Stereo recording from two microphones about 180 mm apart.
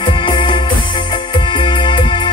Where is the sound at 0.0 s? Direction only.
25° left (ahead or behind).